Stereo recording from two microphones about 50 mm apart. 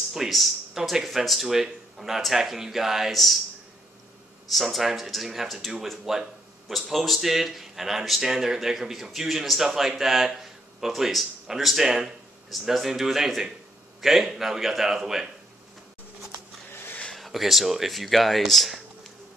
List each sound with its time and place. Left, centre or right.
0.1 s speech: centre
4.5 s speech: centre
17.2 s speech: centre